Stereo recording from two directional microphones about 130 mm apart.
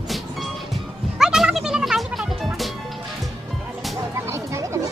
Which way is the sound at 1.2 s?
Centre (ahead or behind).